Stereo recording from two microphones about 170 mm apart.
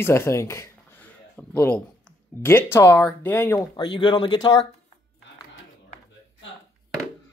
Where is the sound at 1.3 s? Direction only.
10° left (ahead or behind).